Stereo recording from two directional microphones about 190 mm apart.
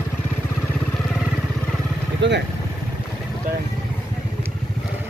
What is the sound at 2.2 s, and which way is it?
Vehicle, 70° right (ahead or behind).